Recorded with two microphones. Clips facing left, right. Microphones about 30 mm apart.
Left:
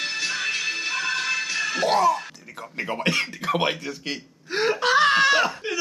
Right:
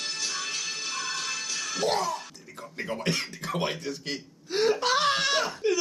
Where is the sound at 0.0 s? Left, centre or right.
Left.